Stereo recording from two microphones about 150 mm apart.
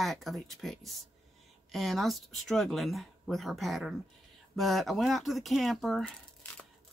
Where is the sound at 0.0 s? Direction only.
Centre (ahead or behind).